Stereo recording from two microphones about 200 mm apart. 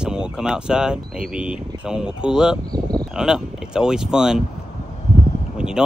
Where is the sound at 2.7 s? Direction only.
20° right (ahead or behind).